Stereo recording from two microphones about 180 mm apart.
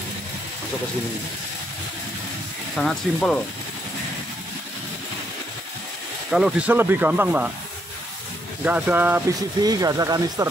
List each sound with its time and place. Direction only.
2.7 s speech: centre (ahead or behind)
6.3 s speech: 5° right (ahead or behind)
8.6 s speech: 10° right (ahead or behind)
9.6 s speech: 20° right (ahead or behind)